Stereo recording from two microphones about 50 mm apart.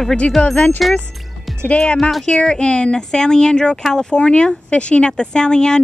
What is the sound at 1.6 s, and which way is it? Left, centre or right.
Speech, left.